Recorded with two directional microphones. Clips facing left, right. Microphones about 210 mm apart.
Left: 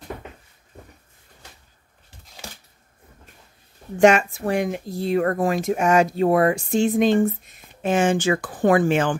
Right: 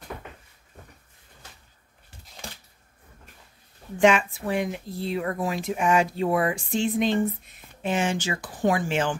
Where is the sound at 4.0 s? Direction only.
45° left (ahead or behind).